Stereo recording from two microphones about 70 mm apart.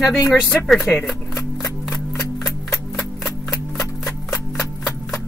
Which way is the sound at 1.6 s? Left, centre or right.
Centre.